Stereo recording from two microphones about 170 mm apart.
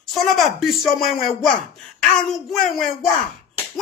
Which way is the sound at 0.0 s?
Centre (ahead or behind).